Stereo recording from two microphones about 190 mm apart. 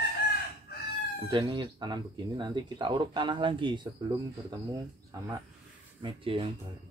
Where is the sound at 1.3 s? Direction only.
25° right (ahead or behind).